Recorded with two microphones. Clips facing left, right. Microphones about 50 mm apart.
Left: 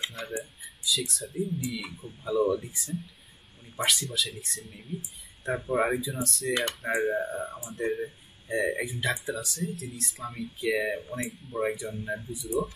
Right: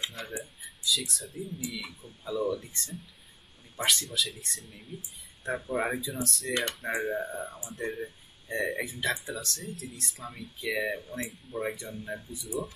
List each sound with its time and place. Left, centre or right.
0.0 s speech: centre
1.8 s speech: centre